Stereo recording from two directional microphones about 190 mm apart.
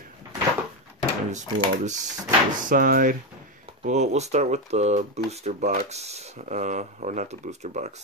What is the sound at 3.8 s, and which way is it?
Speech, 35° right (ahead or behind).